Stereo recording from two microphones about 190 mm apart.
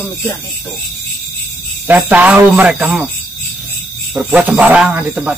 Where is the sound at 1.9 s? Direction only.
10° right (ahead or behind).